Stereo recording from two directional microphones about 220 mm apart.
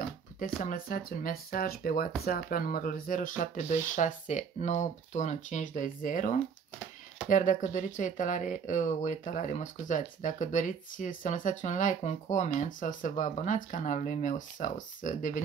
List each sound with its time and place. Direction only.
0.4 s speech: 40° left (ahead or behind)